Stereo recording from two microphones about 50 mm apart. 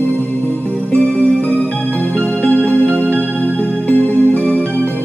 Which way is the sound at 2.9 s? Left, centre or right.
Right.